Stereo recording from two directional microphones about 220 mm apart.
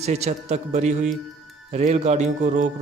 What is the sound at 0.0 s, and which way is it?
Speech, 30° right (ahead or behind).